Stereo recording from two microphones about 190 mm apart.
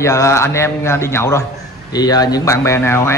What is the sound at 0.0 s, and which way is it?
A man's voice, 15° left (ahead or behind).